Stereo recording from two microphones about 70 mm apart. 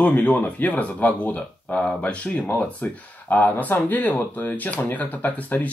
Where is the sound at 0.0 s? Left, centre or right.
Left.